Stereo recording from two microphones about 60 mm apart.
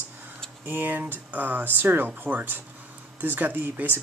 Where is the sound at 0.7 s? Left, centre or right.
Right.